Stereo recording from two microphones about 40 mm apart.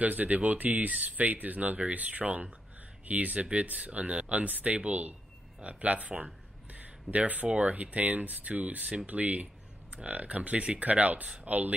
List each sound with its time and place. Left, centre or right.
0.0 s speech: right
6.7 s a sound: right
7.5 s speech: right